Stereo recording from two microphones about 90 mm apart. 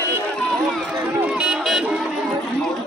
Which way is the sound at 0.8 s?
20° right (ahead or behind).